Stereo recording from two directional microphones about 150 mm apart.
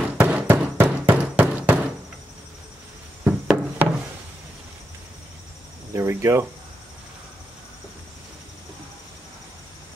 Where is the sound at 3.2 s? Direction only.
10° right (ahead or behind).